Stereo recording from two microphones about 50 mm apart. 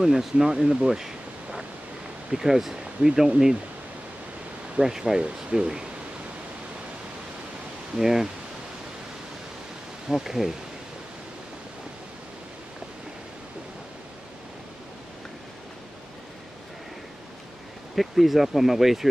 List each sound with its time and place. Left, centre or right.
0.0 s speech: centre
4.7 s speech: centre
7.9 s speech: centre
10.0 s speech: centre
17.9 s speech: centre